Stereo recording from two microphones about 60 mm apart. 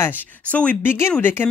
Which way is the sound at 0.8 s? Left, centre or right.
Left.